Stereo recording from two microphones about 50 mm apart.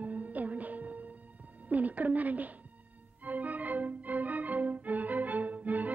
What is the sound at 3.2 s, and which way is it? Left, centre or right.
Organ, right.